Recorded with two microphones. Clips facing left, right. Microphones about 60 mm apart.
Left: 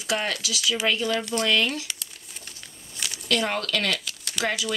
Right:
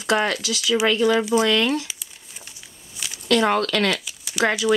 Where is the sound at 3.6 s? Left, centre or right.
Right.